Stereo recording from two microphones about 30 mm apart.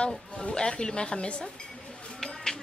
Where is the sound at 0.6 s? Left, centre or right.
Left.